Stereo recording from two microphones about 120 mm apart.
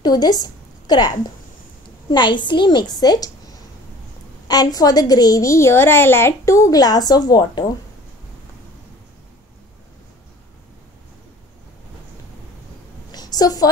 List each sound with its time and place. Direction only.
0.0 s a woman's voice: 35° left (ahead or behind)
4.7 s a woman's voice: 30° left (ahead or behind)
13.1 s a sound: 35° left (ahead or behind)